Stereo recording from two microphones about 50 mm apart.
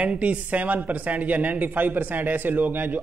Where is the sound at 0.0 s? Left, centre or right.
Right.